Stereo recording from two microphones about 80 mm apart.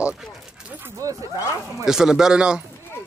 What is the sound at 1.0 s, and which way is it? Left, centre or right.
Speech, right.